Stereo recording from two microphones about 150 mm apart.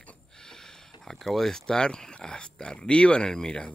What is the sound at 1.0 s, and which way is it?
Speech, centre (ahead or behind).